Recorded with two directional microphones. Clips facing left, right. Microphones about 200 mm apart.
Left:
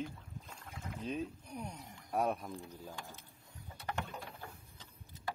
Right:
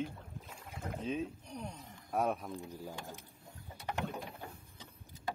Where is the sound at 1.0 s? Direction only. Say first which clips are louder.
Right 1 dB; centre (ahead or behind).